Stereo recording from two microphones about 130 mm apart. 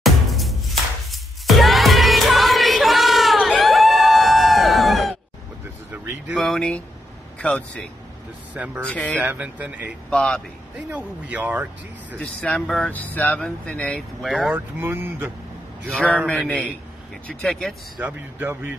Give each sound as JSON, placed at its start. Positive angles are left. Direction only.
{"t": 0.0, "sound": "music", "side_deg": 0}
{"t": 5.9, "sound": "vehicle", "side_deg": -15}
{"t": 6.3, "sound": "speech", "side_deg": 0}
{"t": 8.5, "sound": "speech", "side_deg": -10}
{"t": 8.8, "sound": "speech", "side_deg": 10}
{"t": 9.2, "sound": "speech", "side_deg": -10}
{"t": 10.0, "sound": "speech", "side_deg": 5}
{"t": 10.9, "sound": "speech", "side_deg": -10}
{"t": 12.2, "sound": "speech", "side_deg": 10}
{"t": 14.8, "sound": "speech", "side_deg": -15}
{"t": 15.9, "sound": "speech", "side_deg": 10}
{"t": 17.9, "sound": "speech", "side_deg": -15}